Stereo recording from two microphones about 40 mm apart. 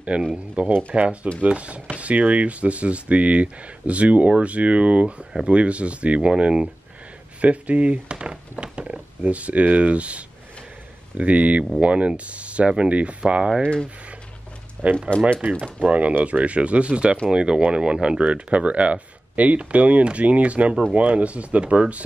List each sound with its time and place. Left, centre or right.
0.3 s speech: right
13.6 s speech: left
14.8 s speech: right